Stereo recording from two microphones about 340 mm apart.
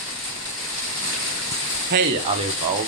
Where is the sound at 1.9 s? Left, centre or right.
Right.